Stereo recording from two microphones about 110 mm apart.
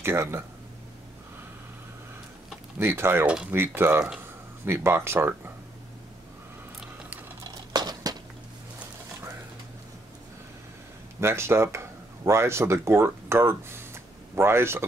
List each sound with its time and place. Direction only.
0.0 s speech: 25° right (ahead or behind)
2.8 s speech: 20° right (ahead or behind)
7.5 s patter: 35° right (ahead or behind)
11.1 s speech: 25° right (ahead or behind)